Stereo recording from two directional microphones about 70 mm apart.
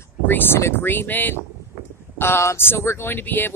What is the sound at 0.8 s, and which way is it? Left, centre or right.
Speech, left.